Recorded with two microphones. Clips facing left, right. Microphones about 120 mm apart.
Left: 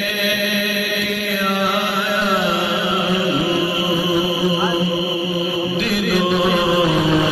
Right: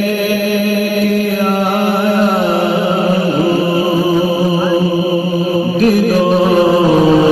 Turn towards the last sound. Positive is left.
turn(degrees=-40)  # may be behind; listen again after turning